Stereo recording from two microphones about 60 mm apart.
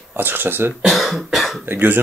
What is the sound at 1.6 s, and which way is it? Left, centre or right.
Speech, right.